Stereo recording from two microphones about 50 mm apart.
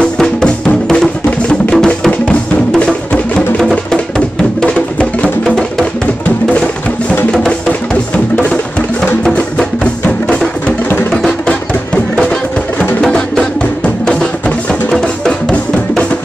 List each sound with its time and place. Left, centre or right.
0.0 s music: centre
5.4 s music: centre
9.2 s music: centre
13.0 s music: centre